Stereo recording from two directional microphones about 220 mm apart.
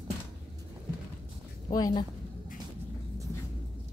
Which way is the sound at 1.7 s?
20° left (ahead or behind).